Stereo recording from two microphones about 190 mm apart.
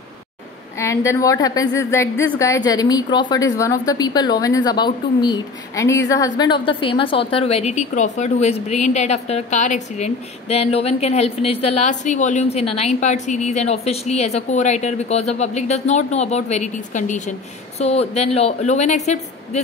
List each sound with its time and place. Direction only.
0.7 s a woman's voice: 15° left (ahead or behind); by 19.6 s 35° left (ahead or behind)